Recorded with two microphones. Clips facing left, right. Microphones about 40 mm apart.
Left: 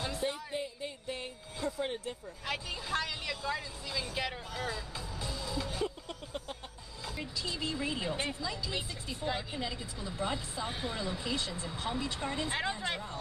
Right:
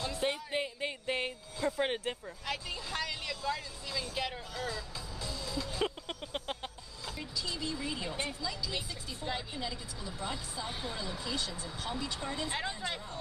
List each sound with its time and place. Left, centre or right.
0.2 s music: right
2.4 s speech: centre
4.6 s music: left
5.8 s a sound: right
7.2 s speech: left
12.2 s speech: centre